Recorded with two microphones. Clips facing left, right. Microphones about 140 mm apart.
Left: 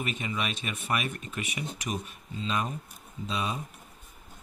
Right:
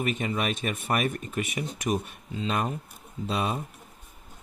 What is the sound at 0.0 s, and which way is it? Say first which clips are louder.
Speech: right 5 dB; 50° right (ahead or behind).